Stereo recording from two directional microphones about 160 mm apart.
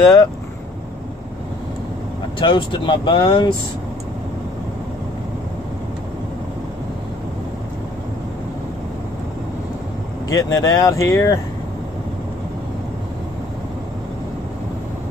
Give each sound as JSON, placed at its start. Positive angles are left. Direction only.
{"t": 0.0, "sound": "speech", "side_deg": 20}
{"t": 2.4, "sound": "speech", "side_deg": 30}
{"t": 10.3, "sound": "speech", "side_deg": 25}